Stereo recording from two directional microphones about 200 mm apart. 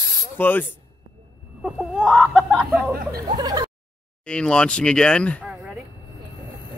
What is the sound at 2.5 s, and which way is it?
Speech, centre (ahead or behind).